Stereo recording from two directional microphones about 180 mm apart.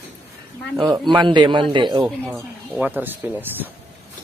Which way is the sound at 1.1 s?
25° right (ahead or behind).